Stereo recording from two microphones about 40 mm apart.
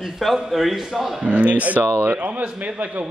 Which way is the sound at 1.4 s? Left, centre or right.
Right.